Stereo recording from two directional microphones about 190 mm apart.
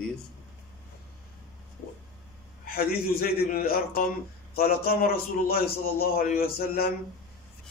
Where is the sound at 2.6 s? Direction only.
50° left (ahead or behind).